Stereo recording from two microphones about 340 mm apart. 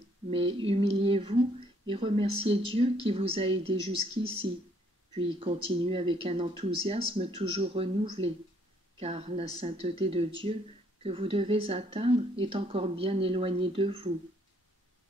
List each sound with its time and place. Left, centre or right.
0.3 s a woman's voice: centre
5.1 s a woman's voice: centre